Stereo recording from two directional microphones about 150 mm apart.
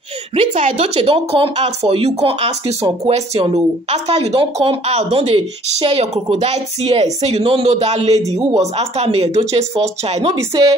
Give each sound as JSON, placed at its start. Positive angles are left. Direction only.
{"t": 0.4, "sound": "a woman's voice", "side_deg": -45}